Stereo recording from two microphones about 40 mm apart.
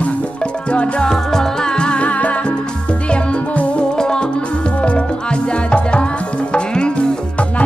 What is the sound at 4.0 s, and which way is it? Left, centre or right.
Music, centre.